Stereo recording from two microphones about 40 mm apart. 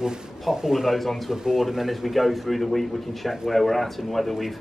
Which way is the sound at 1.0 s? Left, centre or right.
Centre.